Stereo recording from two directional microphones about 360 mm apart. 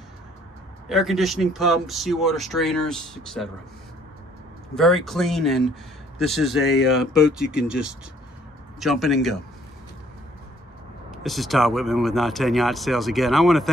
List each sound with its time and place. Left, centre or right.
0.8 s speech: centre
4.7 s speech: centre
11.1 s speech: centre